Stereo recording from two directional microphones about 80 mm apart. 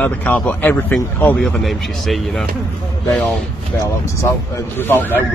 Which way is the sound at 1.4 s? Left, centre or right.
Centre.